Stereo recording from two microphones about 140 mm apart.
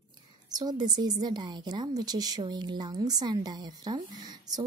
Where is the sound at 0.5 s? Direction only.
30° right (ahead or behind).